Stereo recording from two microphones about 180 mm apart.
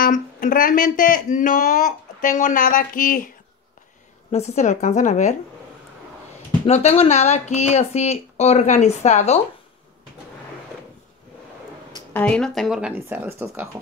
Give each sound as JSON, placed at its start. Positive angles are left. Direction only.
{"t": 0.0, "sound": "speech", "side_deg": 50}
{"t": 4.3, "sound": "speech", "side_deg": 40}
{"t": 6.6, "sound": "speech", "side_deg": 35}
{"t": 12.1, "sound": "speech", "side_deg": 10}